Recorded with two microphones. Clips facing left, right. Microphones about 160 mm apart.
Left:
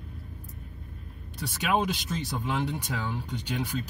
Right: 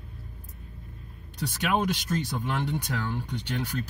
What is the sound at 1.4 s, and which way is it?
Speech, centre (ahead or behind).